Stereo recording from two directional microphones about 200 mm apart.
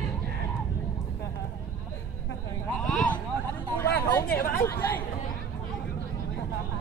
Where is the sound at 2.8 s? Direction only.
5° left (ahead or behind).